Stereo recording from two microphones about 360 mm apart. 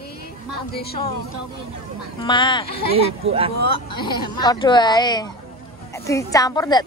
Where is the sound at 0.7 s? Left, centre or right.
Left.